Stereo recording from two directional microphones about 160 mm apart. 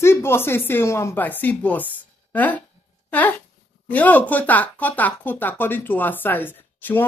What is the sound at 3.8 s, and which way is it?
Speech, 10° left (ahead or behind).